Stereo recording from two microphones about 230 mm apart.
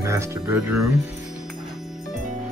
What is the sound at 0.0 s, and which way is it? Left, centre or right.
Speech, centre.